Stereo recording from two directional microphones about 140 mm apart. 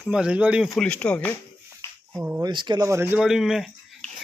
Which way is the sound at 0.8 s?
10° left (ahead or behind).